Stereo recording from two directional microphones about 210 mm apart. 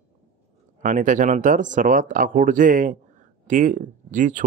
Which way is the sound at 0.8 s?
40° right (ahead or behind).